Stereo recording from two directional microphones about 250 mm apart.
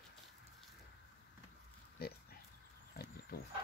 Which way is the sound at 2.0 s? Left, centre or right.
Left.